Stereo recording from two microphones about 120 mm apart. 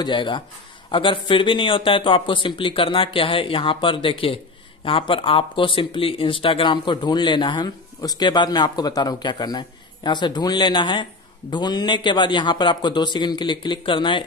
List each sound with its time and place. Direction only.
0.0 s speech: 40° left (ahead or behind)